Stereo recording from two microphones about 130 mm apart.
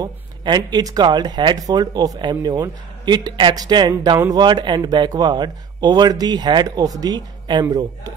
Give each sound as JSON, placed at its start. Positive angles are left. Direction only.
{"t": 0.0, "sound": "speech", "side_deg": -35}